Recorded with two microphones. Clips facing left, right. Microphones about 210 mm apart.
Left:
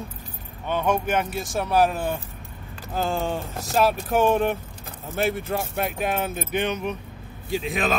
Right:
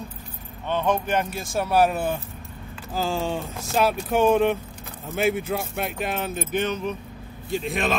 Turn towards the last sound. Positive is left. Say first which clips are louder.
# even
turn(degrees=0)  # may be behind; listen again after turning